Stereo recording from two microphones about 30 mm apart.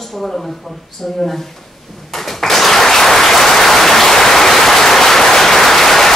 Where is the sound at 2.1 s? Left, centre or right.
Centre.